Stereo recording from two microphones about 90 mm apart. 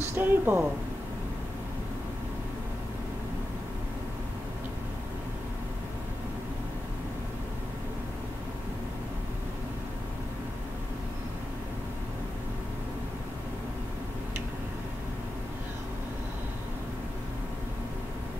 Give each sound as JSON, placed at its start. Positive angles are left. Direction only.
{"t": 0.1, "sound": "speech", "side_deg": -25}